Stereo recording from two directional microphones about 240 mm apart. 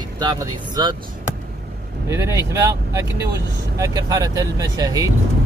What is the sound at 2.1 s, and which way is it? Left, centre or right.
Speech, centre.